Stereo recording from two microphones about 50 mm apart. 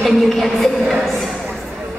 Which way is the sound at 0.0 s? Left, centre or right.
Centre.